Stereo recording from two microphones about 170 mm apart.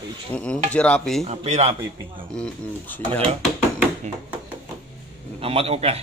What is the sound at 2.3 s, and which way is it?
Speech, 10° left (ahead or behind).